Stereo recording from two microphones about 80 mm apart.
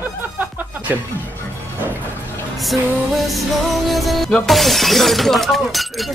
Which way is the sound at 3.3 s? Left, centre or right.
Centre.